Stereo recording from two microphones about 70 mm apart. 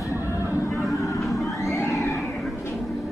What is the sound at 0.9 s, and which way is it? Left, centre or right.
Vehicle, left.